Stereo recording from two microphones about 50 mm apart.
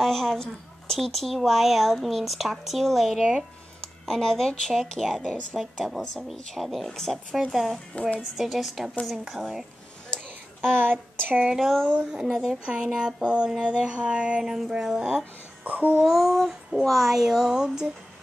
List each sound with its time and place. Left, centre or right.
0.0 s speech: centre
3.8 s speech: centre
5.6 s speech: centre
10.7 s a sound: right
11.5 s speech: centre
12.1 s speech: centre
14.4 s speech: centre
15.6 s a sound: right
16.0 s speech: centre